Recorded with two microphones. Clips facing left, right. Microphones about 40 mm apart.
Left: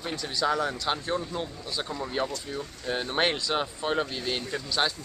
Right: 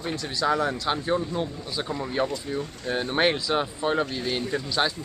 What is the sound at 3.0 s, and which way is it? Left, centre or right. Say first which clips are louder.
Speech: right 4 dB; centre.